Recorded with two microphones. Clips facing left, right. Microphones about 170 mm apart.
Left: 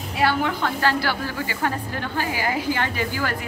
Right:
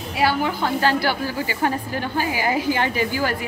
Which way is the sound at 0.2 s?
5° right (ahead or behind).